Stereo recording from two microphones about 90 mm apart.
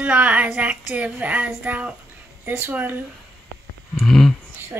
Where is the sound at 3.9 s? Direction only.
5° left (ahead or behind).